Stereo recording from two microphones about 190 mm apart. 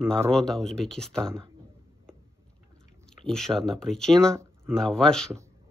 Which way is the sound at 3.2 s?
5° left (ahead or behind).